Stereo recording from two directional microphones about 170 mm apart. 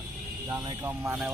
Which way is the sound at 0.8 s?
15° right (ahead or behind).